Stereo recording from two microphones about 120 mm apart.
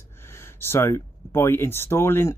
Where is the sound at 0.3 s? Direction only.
20° left (ahead or behind).